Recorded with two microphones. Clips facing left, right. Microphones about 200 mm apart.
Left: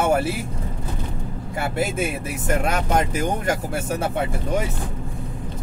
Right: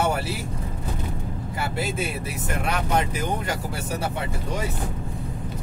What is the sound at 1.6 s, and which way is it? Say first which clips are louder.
Speech: left 4 dB; 50° left (ahead or behind).